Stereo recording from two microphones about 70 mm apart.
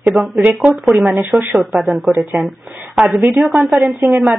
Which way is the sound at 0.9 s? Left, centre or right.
Centre.